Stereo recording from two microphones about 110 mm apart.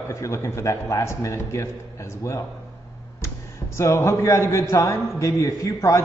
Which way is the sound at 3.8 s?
25° left (ahead or behind).